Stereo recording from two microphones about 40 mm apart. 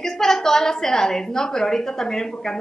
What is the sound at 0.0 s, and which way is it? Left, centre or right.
A woman's voice, centre.